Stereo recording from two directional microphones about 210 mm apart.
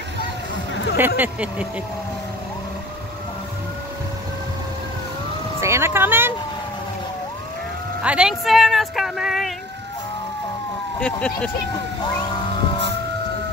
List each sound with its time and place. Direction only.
0.9 s speech: 10° right (ahead or behind)
5.6 s emergency vehicle: 15° right (ahead or behind)
8.0 s speech: 5° right (ahead or behind)
11.0 s speech: 5° left (ahead or behind)